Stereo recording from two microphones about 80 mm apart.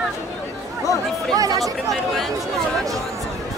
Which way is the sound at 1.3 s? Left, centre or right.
Right.